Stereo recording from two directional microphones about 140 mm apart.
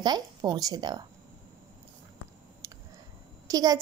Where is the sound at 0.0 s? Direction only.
30° right (ahead or behind).